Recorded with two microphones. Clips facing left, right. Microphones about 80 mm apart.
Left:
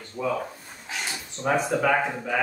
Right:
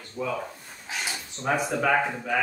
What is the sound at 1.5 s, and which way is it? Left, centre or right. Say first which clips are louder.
Speech: left 2 dB; centre.